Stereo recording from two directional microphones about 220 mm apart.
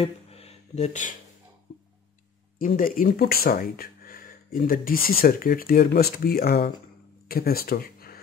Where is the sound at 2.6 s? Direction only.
40° left (ahead or behind).